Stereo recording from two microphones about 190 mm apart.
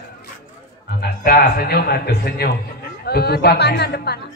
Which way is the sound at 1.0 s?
50° left (ahead or behind).